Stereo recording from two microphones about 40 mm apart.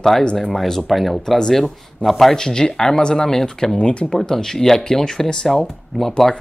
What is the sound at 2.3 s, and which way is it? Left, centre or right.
Speech, centre.